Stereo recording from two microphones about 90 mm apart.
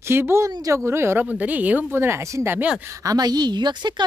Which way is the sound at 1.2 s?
15° right (ahead or behind).